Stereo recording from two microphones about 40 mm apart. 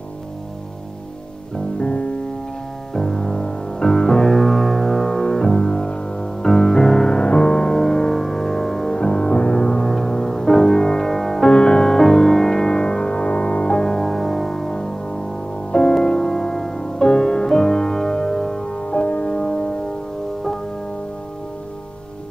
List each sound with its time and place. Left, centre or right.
1.8 s music: left
2.9 s music: centre
7.2 s music: left; by 8.9 s centre
8.9 s music: left
13.7 s music: centre
14.0 s music: centre